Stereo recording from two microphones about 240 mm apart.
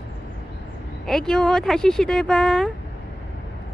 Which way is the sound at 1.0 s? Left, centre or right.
Centre.